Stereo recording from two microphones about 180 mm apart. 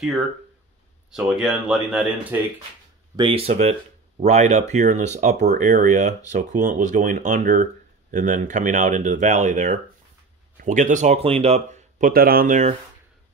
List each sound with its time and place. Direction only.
1.1 s speech: 5° right (ahead or behind)
3.2 s speech: 30° right (ahead or behind)